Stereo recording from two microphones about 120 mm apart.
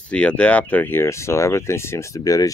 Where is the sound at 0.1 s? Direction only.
10° left (ahead or behind).